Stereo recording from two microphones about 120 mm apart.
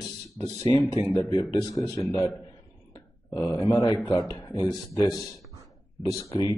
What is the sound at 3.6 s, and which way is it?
A man's voice, 40° left (ahead or behind).